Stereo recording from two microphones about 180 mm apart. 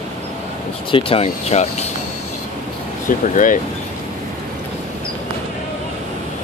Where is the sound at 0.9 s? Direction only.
30° left (ahead or behind).